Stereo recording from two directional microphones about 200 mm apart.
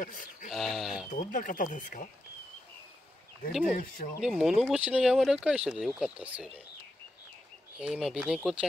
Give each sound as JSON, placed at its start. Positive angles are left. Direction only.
{"t": 0.0, "sound": "a sound", "side_deg": 40}
{"t": 0.5, "sound": "speech", "side_deg": 0}
{"t": 1.1, "sound": "speech", "side_deg": 45}
{"t": 3.6, "sound": "speech", "side_deg": 45}
{"t": 4.2, "sound": "speech", "side_deg": 0}
{"t": 7.8, "sound": "speech", "side_deg": -5}